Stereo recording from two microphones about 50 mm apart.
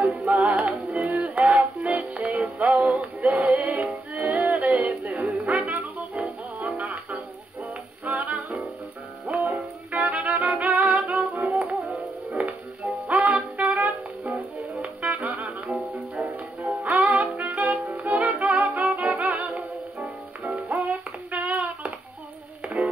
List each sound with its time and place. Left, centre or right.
0.3 s music: right
3.2 s music: centre
3.4 s music: right
8.4 s music: centre
9.3 s music: right
11.8 s music: centre
12.4 s music: centre
16.8 s music: right
20.7 s a sound: right